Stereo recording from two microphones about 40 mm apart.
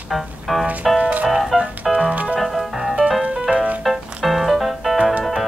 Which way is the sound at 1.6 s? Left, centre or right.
Right.